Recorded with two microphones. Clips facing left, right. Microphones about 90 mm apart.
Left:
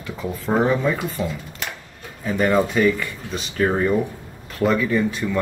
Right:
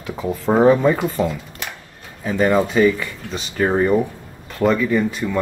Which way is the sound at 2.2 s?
25° right (ahead or behind).